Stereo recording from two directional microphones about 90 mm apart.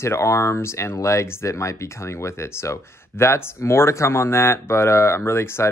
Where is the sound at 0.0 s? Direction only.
30° left (ahead or behind).